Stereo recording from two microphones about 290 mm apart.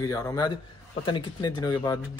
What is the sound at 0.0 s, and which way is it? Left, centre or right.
Speech, centre.